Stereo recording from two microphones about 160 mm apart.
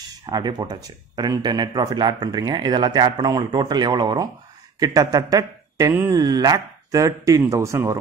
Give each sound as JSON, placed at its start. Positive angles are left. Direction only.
{"t": 0.3, "sound": "speech", "side_deg": -25}